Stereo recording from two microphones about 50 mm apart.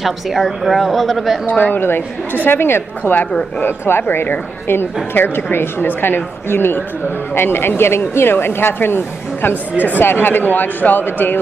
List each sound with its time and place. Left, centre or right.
0.0 s a woman's voice: centre
1.5 s speech: left
1.8 s speech: left